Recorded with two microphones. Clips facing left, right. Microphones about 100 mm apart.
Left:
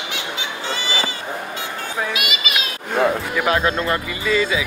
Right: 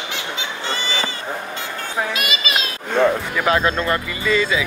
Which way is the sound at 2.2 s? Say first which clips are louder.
Right 1 dB; 35° right (ahead or behind).